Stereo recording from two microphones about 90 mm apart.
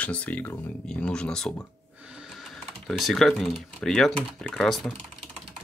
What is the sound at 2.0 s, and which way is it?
Speech, 5° right (ahead or behind).